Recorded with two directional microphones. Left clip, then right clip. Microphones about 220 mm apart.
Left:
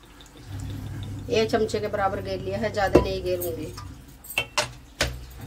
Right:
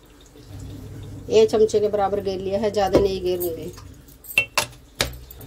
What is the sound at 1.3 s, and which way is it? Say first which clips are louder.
A woman's voice: right 7 dB; 20° right (ahead or behind).